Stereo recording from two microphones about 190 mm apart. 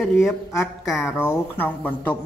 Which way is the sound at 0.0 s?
Centre (ahead or behind).